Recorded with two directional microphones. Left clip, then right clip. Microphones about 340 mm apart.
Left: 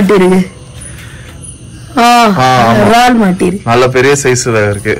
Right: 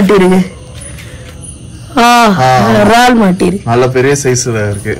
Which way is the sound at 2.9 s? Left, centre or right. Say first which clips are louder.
Even; centre.